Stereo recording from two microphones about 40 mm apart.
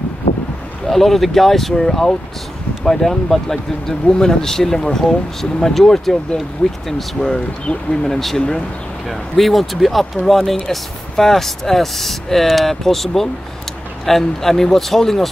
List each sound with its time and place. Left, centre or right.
0.8 s speech: centre
7.2 s speech: left
7.9 s speech: centre
8.4 s speech: left
9.4 s speech: centre